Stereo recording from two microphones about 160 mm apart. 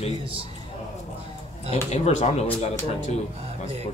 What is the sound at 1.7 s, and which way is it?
Speech, 45° left (ahead or behind).